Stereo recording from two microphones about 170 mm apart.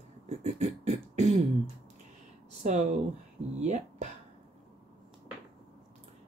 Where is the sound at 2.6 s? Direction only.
45° right (ahead or behind).